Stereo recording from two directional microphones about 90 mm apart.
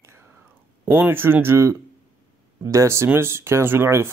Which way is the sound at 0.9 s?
25° right (ahead or behind).